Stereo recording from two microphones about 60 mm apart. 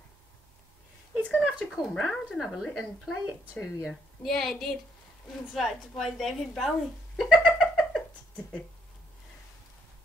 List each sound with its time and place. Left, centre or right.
1.4 s a woman's voice: centre
7.2 s cat: centre